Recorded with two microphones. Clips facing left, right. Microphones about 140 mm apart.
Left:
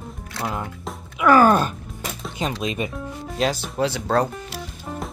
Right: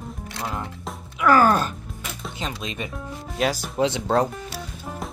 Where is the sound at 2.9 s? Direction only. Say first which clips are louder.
Left 2 dB; 5° right (ahead or behind).